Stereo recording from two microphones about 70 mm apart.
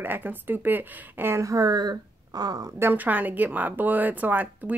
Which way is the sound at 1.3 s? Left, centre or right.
Right.